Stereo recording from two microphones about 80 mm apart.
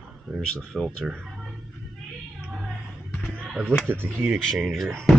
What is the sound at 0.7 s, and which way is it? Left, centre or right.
Speech, centre.